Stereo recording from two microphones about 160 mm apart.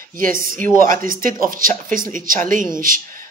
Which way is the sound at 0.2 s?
60° right (ahead or behind).